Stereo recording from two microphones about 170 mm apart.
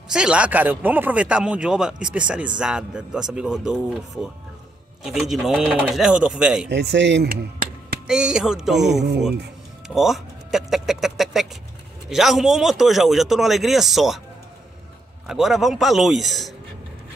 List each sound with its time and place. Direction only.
0.1 s speech: 5° right (ahead or behind)
6.7 s speech: 85° right; by 8.0 s 65° right (ahead or behind)
8.1 s speech: 5° right (ahead or behind)
15.2 s speech: centre (ahead or behind)